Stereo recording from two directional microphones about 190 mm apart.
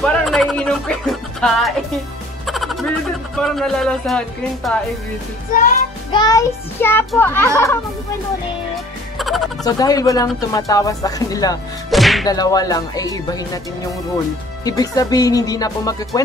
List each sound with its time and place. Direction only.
0.0 s speech: centre (ahead or behind)
2.4 s music: centre (ahead or behind)
5.5 s music: 45° left (ahead or behind)
6.1 s child singing: 20° left (ahead or behind)
9.2 s speech: centre (ahead or behind)
9.7 s speech: 20° left (ahead or behind)
11.9 s music: centre (ahead or behind)
12.3 s speech: 20° left (ahead or behind)
14.6 s speech: 20° left (ahead or behind)